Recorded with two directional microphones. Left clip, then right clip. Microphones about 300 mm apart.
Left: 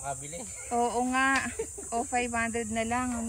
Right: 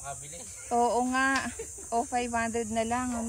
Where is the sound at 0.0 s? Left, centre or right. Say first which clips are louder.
Left 4 dB; left.